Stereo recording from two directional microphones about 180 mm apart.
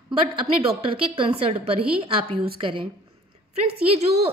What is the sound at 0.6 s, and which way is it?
A woman's voice, 30° right (ahead or behind).